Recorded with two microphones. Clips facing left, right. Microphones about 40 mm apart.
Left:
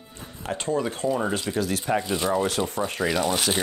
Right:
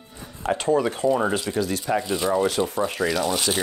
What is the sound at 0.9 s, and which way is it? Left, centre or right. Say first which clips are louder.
Speech: right 4 dB; centre.